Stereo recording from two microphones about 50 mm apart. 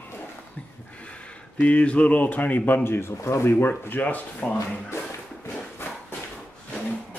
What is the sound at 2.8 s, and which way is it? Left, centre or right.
Speech, left.